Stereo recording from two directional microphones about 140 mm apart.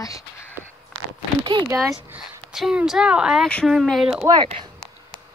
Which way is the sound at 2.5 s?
Centre (ahead or behind).